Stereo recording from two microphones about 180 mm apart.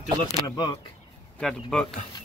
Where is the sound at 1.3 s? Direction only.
5° left (ahead or behind).